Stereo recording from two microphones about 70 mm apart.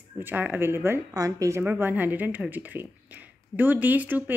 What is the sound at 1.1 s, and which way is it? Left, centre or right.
Speech, right.